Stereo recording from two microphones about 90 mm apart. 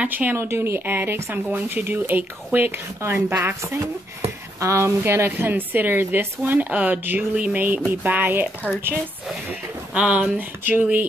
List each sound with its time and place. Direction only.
0.0 s a woman's voice: 20° right (ahead or behind)
9.9 s speech: 15° right (ahead or behind)